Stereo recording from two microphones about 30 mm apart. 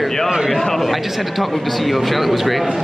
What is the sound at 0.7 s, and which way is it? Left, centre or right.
Speech, centre.